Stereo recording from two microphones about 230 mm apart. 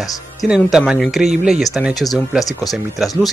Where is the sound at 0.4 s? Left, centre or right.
Centre.